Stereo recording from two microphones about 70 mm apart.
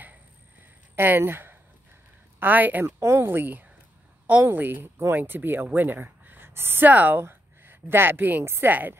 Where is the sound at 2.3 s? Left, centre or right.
Right.